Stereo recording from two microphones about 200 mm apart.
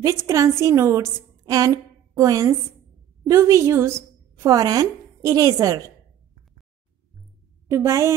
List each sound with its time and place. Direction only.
0.0 s a woman's voice: 15° right (ahead or behind)
7.7 s a woman's voice: 15° right (ahead or behind)